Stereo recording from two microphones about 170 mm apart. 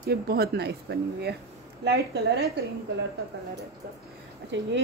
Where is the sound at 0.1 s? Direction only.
65° right (ahead or behind).